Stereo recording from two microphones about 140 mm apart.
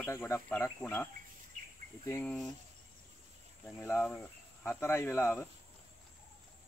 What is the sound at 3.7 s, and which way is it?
Speech, 15° left (ahead or behind).